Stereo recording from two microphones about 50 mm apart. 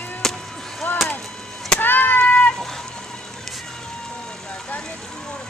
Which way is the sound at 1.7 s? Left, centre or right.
Left.